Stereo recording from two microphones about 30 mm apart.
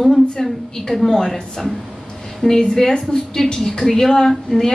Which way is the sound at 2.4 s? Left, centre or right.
Left.